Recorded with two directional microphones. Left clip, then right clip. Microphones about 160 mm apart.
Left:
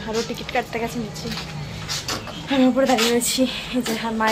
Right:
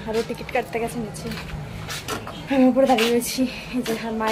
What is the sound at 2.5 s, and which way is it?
A woman's voice, centre (ahead or behind).